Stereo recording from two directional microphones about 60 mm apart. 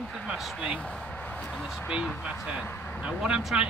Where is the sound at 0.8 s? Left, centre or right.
Centre.